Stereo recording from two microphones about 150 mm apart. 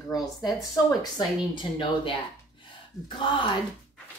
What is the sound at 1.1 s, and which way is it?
A woman's voice, 35° left (ahead or behind).